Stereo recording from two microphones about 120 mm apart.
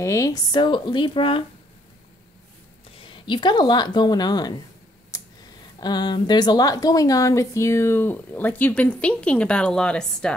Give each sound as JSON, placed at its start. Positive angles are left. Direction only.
{"t": 0.0, "sound": "speech", "side_deg": 25}
{"t": 3.0, "sound": "speech", "side_deg": 40}
{"t": 5.1, "sound": "a sound", "side_deg": 25}
{"t": 5.8, "sound": "speech", "side_deg": 35}